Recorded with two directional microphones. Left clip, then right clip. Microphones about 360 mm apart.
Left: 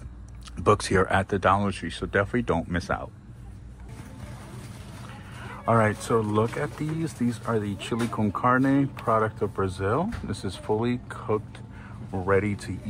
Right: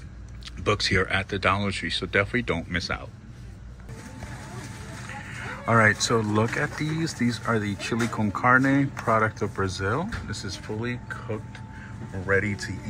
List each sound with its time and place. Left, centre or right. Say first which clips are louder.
0.6 s speech: left 2 dB; centre
5.7 s speech: right 2 dB; centre